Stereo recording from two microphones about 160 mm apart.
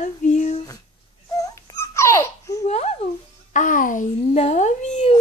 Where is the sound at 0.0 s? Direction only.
50° left (ahead or behind).